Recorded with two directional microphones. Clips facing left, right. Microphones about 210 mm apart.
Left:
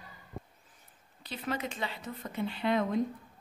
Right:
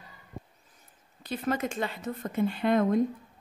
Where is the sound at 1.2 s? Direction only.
50° right (ahead or behind).